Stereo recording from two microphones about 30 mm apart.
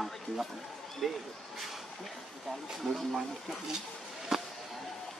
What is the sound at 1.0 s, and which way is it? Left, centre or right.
Speech, centre.